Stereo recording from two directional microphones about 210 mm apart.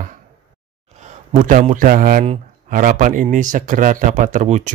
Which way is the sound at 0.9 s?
35° right (ahead or behind).